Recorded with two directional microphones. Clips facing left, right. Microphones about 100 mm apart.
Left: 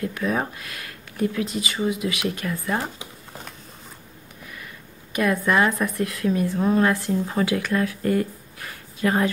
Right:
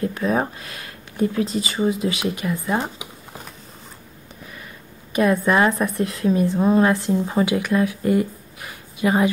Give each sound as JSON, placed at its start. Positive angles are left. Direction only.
{"t": 0.0, "sound": "a woman's voice", "side_deg": -30}
{"t": 5.1, "sound": "a woman's voice", "side_deg": -25}